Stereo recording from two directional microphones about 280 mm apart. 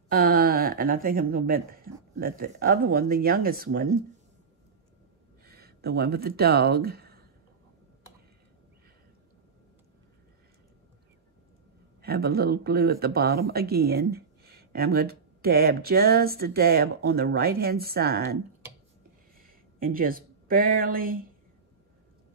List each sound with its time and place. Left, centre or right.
0.1 s speech: right
5.4 s speech: right
12.0 s speech: right